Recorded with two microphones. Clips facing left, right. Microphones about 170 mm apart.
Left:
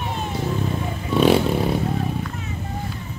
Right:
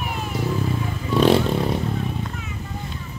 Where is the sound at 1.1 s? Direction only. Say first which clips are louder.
Even; centre (ahead or behind).